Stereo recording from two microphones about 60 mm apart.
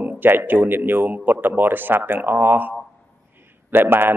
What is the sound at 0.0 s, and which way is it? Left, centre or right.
Speech, right.